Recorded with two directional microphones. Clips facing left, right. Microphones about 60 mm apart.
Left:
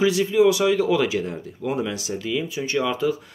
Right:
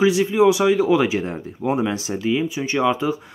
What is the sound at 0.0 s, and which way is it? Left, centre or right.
Speech, right.